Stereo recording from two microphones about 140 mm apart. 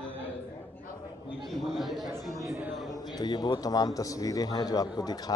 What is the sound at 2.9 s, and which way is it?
A man's voice, 30° left (ahead or behind).